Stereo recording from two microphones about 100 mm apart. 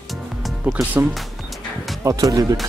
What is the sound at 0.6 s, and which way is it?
Music, 15° right (ahead or behind).